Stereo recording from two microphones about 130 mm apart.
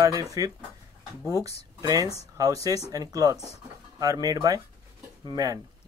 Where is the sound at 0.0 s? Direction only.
25° right (ahead or behind).